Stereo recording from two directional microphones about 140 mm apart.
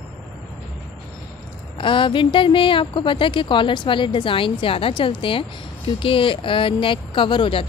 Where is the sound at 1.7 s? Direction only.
35° left (ahead or behind).